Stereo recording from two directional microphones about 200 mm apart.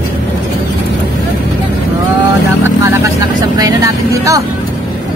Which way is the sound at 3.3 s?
20° right (ahead or behind).